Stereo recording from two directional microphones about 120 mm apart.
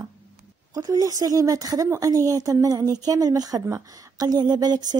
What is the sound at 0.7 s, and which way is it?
Speech, 30° right (ahead or behind).